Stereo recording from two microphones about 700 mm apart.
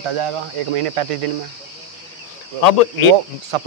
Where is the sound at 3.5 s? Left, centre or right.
Right.